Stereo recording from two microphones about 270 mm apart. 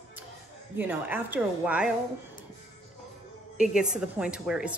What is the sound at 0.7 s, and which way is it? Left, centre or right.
A woman's voice, centre.